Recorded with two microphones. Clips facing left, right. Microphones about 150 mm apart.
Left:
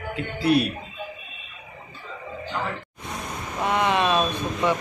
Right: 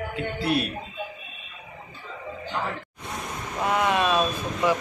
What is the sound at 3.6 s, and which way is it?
Vehicle, centre (ahead or behind).